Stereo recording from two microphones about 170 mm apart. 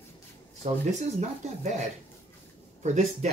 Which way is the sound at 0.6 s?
35° right (ahead or behind).